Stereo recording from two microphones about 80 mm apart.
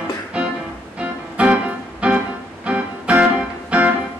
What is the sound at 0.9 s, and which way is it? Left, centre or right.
Music, centre.